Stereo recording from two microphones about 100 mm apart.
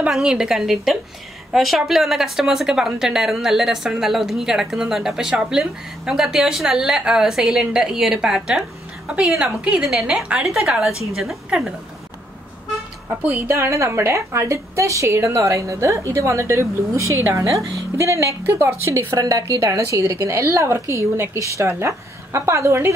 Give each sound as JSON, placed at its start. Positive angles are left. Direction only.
{"t": 0.1, "sound": "a woman's voice", "side_deg": -5}
{"t": 13.2, "sound": "a woman's voice", "side_deg": -15}
{"t": 13.5, "sound": "a woman's voice", "side_deg": -30}